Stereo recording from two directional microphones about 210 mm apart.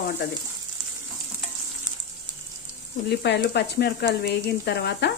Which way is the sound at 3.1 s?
55° left (ahead or behind).